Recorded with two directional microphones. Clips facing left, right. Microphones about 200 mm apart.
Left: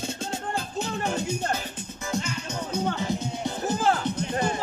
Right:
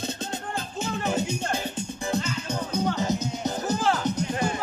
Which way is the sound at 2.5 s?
40° right (ahead or behind).